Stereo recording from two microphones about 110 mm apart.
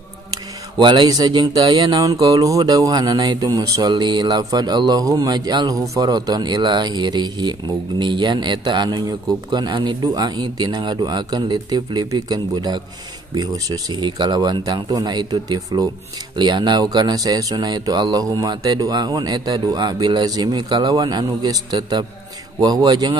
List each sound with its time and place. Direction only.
0.7 s speech: 45° right (ahead or behind)